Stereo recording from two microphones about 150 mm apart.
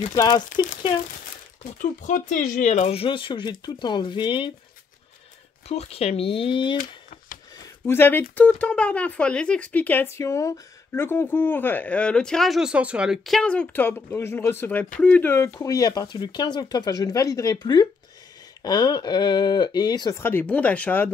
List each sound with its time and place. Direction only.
0.1 s speech: 25° left (ahead or behind)
1.8 s speech: 60° left (ahead or behind); by 4.5 s 30° left (ahead or behind)
5.7 s speech: 45° left (ahead or behind)
7.8 s speech: 15° left (ahead or behind)